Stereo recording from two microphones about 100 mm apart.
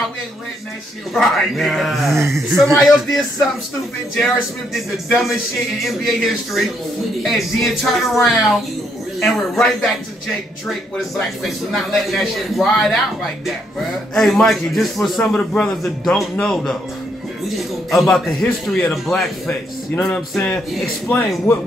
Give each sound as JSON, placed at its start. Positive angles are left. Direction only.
{"t": 1.1, "sound": "a man's voice", "side_deg": 5}
{"t": 2.1, "sound": "speech", "side_deg": -30}
{"t": 2.5, "sound": "a man's voice", "side_deg": 0}
{"t": 5.9, "sound": "a man's voice", "side_deg": 0}
{"t": 11.0, "sound": "a man's voice", "side_deg": 0}
{"t": 15.3, "sound": "a man's voice", "side_deg": 15}
{"t": 15.7, "sound": "a man's voice", "side_deg": 5}
{"t": 21.1, "sound": "a man's voice", "side_deg": 15}